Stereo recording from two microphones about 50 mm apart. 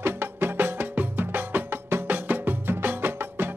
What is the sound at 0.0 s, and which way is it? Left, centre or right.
Music, right.